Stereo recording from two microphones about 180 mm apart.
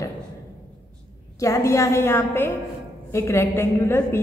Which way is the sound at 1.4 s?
15° left (ahead or behind).